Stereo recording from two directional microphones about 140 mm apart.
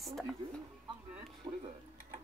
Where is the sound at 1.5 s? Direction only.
35° right (ahead or behind).